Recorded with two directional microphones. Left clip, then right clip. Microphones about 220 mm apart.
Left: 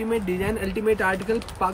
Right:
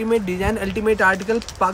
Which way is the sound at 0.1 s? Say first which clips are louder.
Right 5 dB; 5° right (ahead or behind).